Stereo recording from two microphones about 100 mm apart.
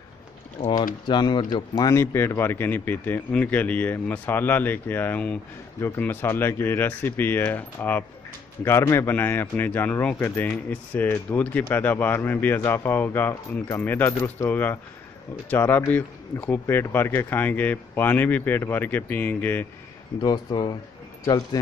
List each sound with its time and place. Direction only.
0.7 s speech: 50° left (ahead or behind)
2.0 s speech: 25° left (ahead or behind)
20.2 s speech: 45° left (ahead or behind)